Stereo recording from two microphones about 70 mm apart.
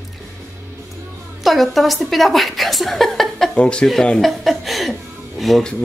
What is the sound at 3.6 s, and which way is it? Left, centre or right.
Speech, centre.